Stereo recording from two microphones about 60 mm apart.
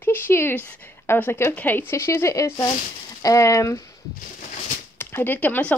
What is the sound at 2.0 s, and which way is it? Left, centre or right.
Speech, left.